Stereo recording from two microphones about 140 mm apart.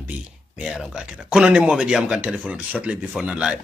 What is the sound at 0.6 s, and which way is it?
Speech, 5° right (ahead or behind).